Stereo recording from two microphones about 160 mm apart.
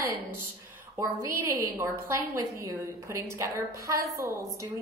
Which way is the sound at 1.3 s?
15° right (ahead or behind).